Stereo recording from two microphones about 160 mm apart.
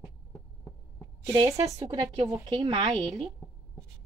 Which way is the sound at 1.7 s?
25° right (ahead or behind).